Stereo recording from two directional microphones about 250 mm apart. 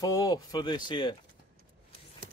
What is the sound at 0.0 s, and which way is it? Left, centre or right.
Speech, centre.